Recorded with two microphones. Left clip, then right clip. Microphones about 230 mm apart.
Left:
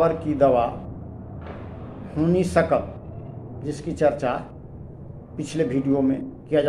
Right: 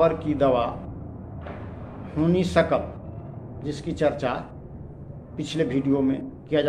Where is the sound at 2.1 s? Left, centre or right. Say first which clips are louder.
Left 1 dB; centre.